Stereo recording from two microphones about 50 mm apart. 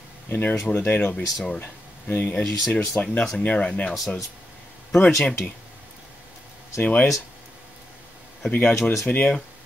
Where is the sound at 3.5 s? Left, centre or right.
Left.